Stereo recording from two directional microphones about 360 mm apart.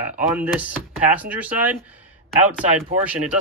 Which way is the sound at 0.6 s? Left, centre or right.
Centre.